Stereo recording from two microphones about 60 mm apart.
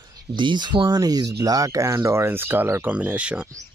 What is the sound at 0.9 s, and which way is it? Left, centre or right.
Speech, right.